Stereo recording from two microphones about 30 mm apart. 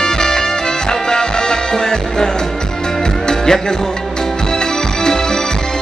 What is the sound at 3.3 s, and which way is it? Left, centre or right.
Music, left.